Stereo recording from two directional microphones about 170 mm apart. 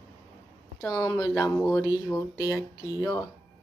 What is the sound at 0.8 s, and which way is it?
Speech, 25° left (ahead or behind).